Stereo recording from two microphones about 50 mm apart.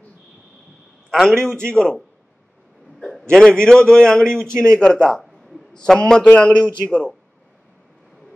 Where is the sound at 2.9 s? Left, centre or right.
Centre.